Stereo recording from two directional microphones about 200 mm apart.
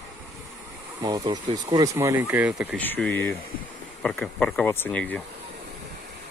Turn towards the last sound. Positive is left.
turn(degrees=5)  # may be behind; listen again after turning